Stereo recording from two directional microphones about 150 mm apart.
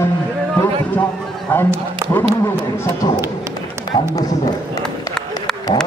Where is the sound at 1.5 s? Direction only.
10° left (ahead or behind).